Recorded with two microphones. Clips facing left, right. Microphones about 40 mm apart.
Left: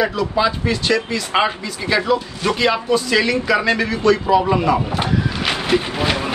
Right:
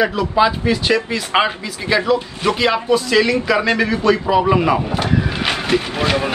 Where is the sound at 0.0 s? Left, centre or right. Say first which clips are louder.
Right 3 dB; centre.